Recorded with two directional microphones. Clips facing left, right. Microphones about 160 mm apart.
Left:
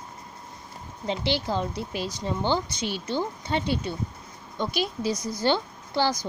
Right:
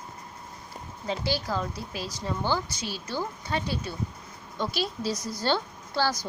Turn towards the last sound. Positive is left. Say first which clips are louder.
# left 2 dB
turn(degrees=15)  # may be behind; listen again after turning